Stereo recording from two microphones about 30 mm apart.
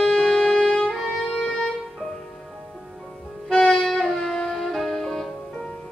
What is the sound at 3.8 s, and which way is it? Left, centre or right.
Wind instrument, centre.